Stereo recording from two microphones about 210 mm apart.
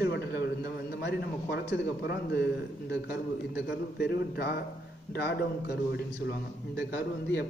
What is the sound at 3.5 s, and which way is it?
A man's voice, 50° left (ahead or behind).